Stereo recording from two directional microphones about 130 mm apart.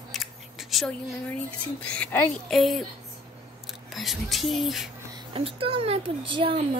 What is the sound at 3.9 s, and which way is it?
Music, centre (ahead or behind).